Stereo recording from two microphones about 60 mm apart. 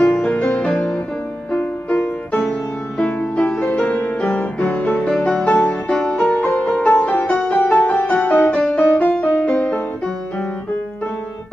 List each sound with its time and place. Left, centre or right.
0.0 s music: left
6.3 s music: left
8.4 s music: centre
8.7 s music: left